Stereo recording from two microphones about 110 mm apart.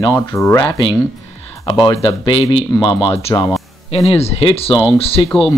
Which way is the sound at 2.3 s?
60° left (ahead or behind).